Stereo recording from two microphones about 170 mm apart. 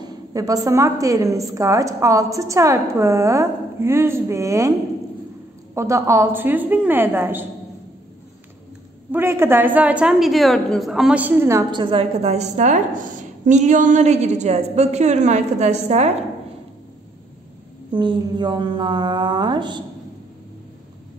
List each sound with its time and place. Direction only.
0.0 s a woman's voice: 20° right (ahead or behind)
5.8 s a woman's voice: 15° right (ahead or behind)
9.1 s a woman's voice: 15° right (ahead or behind)
11.7 s a woman's voice: 30° right (ahead or behind)
17.9 s a woman's voice: 25° right (ahead or behind)